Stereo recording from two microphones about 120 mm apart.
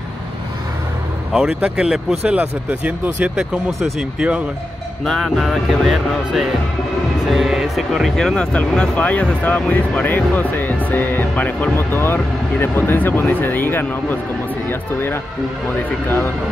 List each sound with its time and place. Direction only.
1.3 s speech: 5° right (ahead or behind)
5.0 s music: centre (ahead or behind)
7.2 s speech: 5° right (ahead or behind); by 15.1 s 15° left (ahead or behind)